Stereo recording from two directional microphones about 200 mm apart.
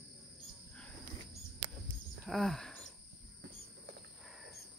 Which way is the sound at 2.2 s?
Centre (ahead or behind).